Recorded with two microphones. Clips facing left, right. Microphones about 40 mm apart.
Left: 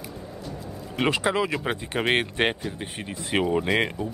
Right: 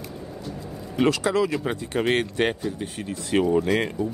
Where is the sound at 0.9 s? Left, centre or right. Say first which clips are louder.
Right 2 dB; left.